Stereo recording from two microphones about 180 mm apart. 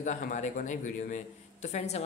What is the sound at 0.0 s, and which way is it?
Speech, 40° left (ahead or behind).